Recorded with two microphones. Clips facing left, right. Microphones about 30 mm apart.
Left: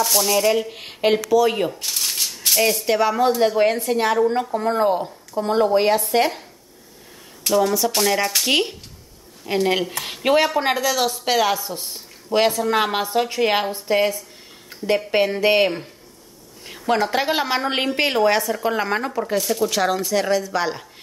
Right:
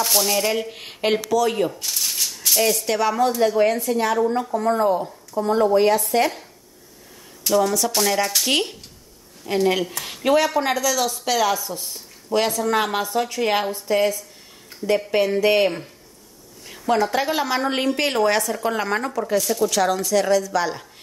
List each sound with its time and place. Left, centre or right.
0.1 s a woman's voice: centre
1.8 s shuffling cards: centre
2.5 s a woman's voice: centre
3.3 s a woman's voice: left
7.5 s a woman's voice: centre
10.0 s a woman's voice: left
18.0 s a woman's voice: centre